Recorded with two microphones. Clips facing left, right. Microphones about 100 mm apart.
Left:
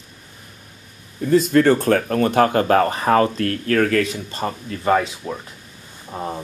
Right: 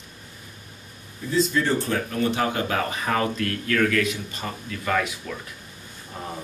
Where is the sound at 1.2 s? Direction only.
55° left (ahead or behind); by 6.3 s 30° left (ahead or behind).